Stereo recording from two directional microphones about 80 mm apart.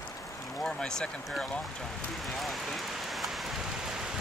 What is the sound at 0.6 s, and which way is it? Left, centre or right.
Speech, centre.